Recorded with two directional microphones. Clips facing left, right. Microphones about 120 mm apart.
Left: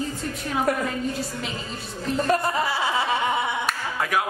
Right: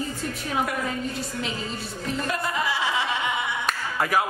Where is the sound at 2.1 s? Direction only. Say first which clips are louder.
Left 6 dB; 35° left (ahead or behind).